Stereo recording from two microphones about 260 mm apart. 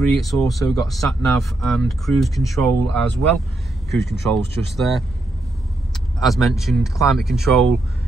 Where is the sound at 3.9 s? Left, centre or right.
Centre.